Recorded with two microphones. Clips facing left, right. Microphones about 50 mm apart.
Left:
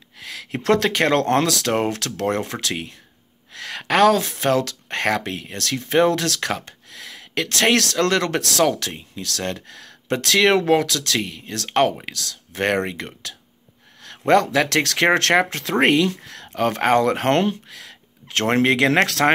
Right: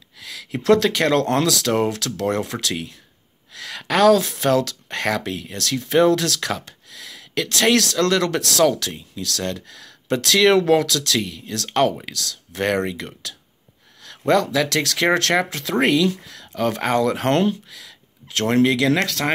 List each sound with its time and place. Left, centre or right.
0.2 s a sound: left
0.7 s speech: left
14.0 s speech: left
19.0 s speech: left